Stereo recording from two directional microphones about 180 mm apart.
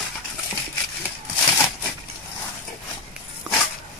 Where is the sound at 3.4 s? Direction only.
5° right (ahead or behind).